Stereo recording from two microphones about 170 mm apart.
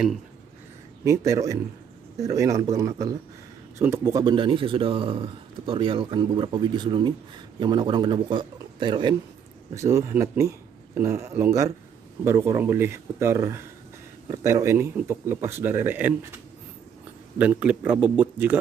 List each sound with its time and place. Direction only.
1.0 s speech: 15° right (ahead or behind)
9.8 s speech: 15° right (ahead or behind)
17.4 s speech: 10° right (ahead or behind)